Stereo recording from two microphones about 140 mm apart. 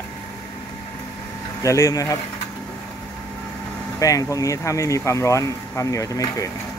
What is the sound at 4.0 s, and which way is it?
Speech, 25° left (ahead or behind).